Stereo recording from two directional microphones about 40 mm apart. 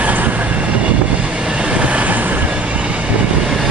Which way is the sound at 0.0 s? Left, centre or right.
Right.